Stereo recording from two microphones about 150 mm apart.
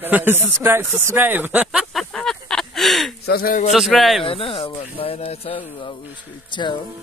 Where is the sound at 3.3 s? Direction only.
80° left.